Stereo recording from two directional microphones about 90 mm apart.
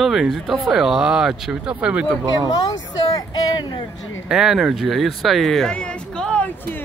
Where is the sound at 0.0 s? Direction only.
5° right (ahead or behind).